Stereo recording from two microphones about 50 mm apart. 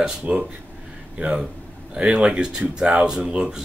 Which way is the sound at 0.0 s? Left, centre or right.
Centre.